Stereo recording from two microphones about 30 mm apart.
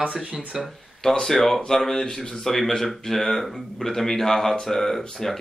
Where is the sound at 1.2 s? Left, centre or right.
Centre.